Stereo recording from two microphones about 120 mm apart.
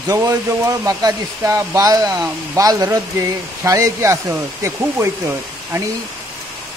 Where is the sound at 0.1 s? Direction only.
30° right (ahead or behind).